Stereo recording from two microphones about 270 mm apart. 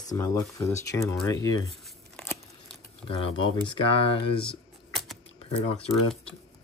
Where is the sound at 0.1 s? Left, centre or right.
Centre.